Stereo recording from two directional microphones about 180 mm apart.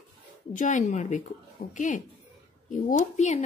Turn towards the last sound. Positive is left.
turn(degrees=40)  # may be behind; listen again after turning